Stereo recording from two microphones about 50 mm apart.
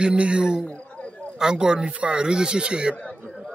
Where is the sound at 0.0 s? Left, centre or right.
Right.